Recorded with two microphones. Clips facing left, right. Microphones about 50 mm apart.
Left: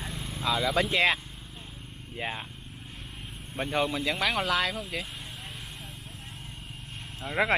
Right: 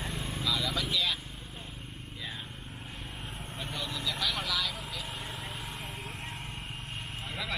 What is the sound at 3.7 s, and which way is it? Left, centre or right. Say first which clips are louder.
Speech: left 9 dB; left.